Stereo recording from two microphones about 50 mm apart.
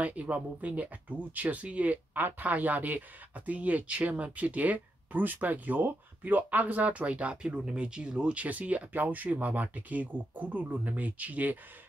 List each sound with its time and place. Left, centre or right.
0.0 s speech: right